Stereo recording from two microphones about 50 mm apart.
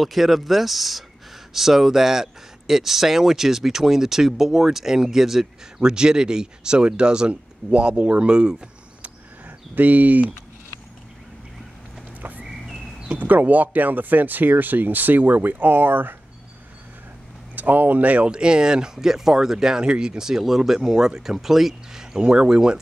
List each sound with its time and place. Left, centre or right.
0.0 s speech: centre
9.8 s speech: right
12.2 s a sound: right
12.4 s a sound: centre
13.1 s speech: right
17.6 s speech: right
18.3 s speech: centre